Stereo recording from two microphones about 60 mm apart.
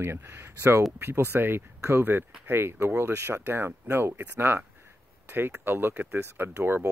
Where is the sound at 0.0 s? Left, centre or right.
Right.